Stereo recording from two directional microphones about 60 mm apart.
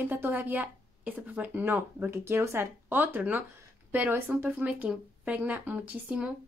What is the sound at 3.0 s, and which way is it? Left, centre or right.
Speech, right.